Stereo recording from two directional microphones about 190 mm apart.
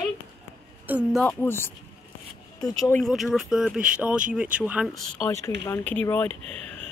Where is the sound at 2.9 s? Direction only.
Centre (ahead or behind).